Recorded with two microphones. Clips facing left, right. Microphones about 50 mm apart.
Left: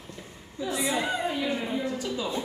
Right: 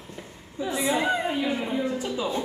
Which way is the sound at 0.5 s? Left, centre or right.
Right.